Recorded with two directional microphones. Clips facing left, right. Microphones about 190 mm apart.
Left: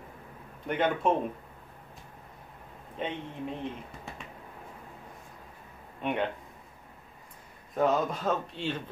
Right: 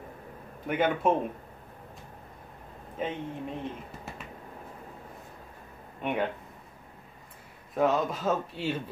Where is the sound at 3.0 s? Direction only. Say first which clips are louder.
Right 2 dB; 5° right (ahead or behind).